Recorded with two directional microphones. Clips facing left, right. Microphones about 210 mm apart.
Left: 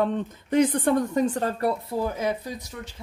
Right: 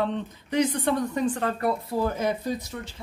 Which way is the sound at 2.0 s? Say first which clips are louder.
Right 2 dB; 10° left (ahead or behind).